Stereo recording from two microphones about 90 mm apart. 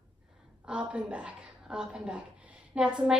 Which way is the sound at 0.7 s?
15° right (ahead or behind).